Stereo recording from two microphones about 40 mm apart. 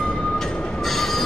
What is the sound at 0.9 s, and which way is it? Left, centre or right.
Train, centre.